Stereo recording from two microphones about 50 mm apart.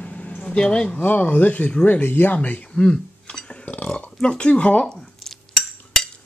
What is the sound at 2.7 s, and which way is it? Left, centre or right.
Burping, centre.